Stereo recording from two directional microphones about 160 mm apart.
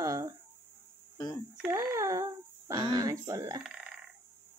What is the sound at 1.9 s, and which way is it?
Speech, 20° right (ahead or behind).